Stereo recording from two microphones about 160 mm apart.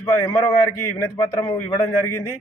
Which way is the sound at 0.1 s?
15° left (ahead or behind).